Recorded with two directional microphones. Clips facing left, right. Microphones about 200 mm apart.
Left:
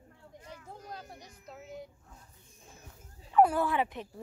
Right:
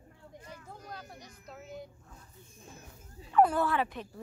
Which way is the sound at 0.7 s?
25° left (ahead or behind).